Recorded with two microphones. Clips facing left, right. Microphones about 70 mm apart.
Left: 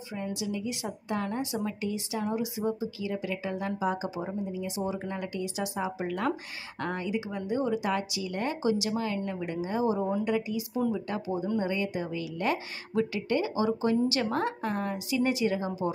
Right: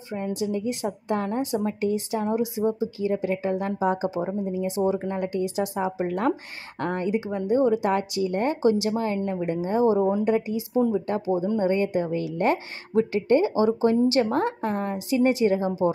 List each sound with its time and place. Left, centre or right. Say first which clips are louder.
0.1 s speech: right 7 dB; right